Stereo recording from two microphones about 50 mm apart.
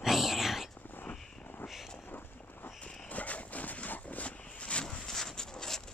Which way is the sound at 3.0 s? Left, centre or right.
Left.